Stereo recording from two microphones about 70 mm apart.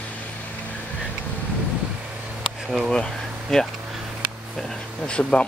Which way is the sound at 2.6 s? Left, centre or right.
Centre.